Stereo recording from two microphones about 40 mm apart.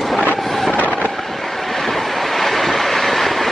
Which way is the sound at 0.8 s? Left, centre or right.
Left.